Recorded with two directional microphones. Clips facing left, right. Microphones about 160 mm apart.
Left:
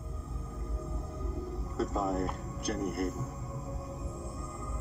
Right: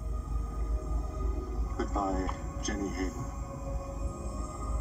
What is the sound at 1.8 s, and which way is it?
Speech, centre (ahead or behind).